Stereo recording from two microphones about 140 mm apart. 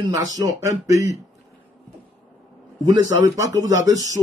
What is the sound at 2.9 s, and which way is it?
Speech, 25° right (ahead or behind).